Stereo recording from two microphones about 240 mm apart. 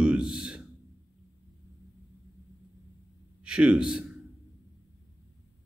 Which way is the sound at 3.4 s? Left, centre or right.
Centre.